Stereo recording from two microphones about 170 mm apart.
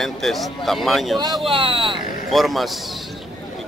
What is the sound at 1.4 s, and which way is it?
Speech, 30° right (ahead or behind).